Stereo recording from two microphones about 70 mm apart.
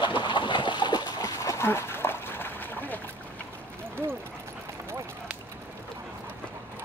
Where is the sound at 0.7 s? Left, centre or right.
Left.